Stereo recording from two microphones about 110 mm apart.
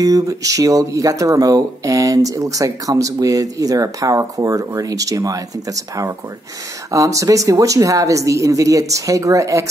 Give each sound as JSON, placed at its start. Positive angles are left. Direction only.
{"t": 0.0, "sound": "speech", "side_deg": -30}